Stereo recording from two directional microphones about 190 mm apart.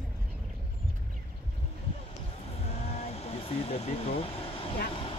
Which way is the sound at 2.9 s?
35° left (ahead or behind).